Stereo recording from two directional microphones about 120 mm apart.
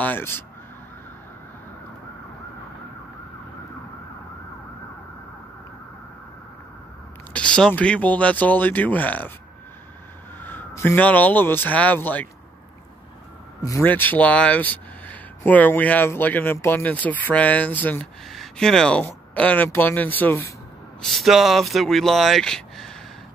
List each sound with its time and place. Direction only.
0.0 s speech: 15° left (ahead or behind)
7.3 s speech: 10° left (ahead or behind)
10.4 s speech: 15° left (ahead or behind)
13.6 s speech: 30° left (ahead or behind)
13.8 s speech: 15° left (ahead or behind)
18.3 s speech: centre (ahead or behind); by 20.5 s 20° left (ahead or behind)
21.0 s speech: centre (ahead or behind)